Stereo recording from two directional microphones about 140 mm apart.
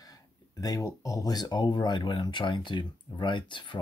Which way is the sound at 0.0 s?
25° left (ahead or behind).